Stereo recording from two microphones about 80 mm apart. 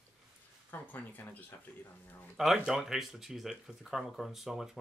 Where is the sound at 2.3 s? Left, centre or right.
Centre.